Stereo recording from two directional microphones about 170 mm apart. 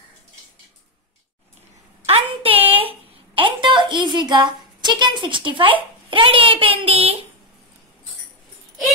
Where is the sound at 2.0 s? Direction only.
35° right (ahead or behind).